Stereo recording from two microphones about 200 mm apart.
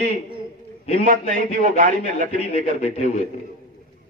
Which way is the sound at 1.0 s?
40° right (ahead or behind).